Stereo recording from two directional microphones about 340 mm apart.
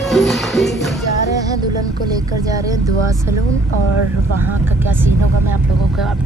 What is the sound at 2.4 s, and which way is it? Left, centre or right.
Speech, centre.